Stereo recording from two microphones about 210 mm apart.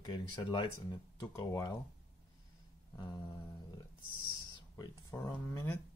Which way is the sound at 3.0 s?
20° left (ahead or behind).